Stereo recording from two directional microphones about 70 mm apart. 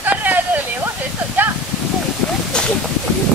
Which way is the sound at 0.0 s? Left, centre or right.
Right.